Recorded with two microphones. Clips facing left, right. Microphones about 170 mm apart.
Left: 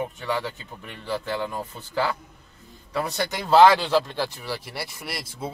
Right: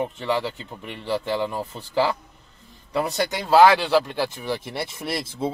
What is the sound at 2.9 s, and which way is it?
Speech, 15° right (ahead or behind).